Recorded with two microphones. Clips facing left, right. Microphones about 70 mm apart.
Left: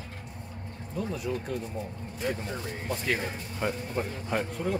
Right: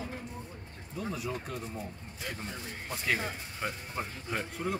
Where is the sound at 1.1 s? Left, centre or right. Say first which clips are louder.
Left 4 dB; centre.